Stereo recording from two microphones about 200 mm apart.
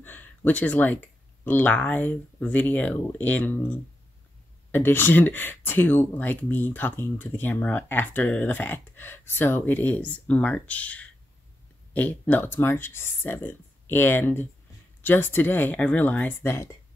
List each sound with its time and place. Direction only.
0.0 s speech: 10° left (ahead or behind)